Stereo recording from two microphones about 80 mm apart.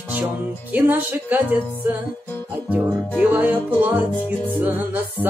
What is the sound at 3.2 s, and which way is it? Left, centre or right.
Music, right.